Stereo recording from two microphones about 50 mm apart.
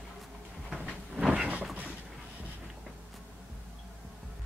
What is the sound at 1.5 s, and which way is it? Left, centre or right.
Vehicle, right.